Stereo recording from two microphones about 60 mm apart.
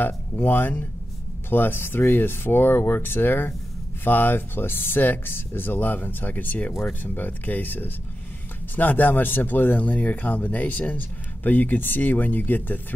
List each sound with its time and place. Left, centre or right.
0.0 s speech: left